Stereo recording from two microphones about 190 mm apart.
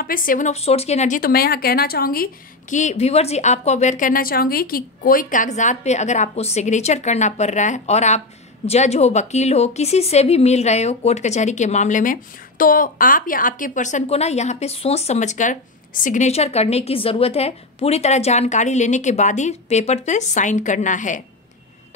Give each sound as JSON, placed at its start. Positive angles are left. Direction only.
{"t": 0.0, "sound": "a woman's voice", "side_deg": 45}
{"t": 2.7, "sound": "a woman's voice", "side_deg": 40}